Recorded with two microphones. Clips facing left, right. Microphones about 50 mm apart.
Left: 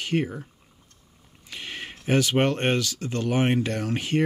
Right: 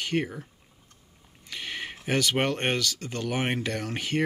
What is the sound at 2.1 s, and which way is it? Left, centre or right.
Speech, centre.